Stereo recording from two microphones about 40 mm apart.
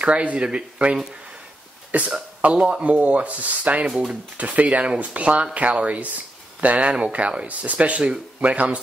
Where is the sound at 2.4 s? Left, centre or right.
Right.